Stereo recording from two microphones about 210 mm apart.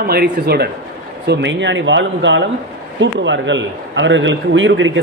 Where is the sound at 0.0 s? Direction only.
50° right (ahead or behind).